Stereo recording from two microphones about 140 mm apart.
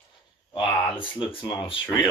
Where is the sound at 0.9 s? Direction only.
35° left (ahead or behind).